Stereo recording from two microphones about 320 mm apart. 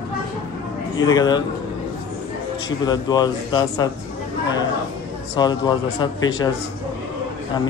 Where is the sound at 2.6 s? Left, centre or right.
Centre.